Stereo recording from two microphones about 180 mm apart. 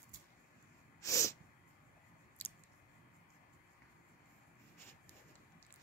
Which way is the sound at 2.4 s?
10° left (ahead or behind).